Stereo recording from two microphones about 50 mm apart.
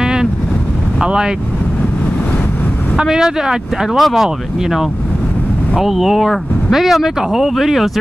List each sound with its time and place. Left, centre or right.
0.0 s boat: centre
1.0 s speech: centre
3.0 s speech: centre